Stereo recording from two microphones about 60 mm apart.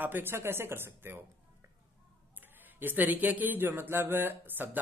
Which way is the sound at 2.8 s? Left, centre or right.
Right.